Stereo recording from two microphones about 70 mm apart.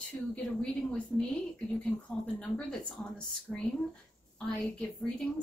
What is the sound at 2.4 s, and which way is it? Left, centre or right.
A woman's voice, centre.